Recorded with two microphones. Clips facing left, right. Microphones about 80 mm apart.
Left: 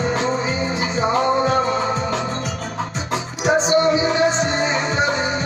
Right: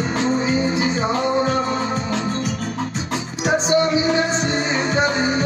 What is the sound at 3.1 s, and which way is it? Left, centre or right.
Music, left.